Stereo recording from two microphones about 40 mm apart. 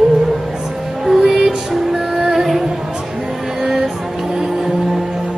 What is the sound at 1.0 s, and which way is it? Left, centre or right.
Music, centre.